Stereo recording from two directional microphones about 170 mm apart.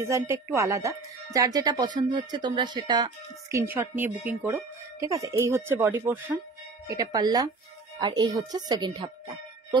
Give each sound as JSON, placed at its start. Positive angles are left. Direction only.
{"t": 0.0, "sound": "speech", "side_deg": -15}